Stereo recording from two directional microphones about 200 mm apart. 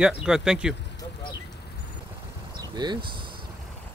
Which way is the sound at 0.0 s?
5° right (ahead or behind).